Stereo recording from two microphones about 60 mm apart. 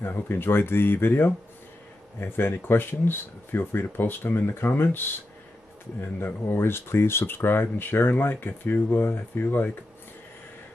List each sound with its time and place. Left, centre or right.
0.0 s speech: left